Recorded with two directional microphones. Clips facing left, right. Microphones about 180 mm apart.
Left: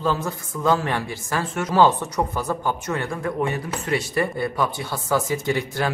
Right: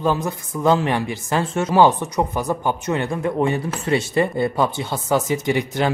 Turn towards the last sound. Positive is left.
turn(degrees=-20)  # may be behind; listen again after turning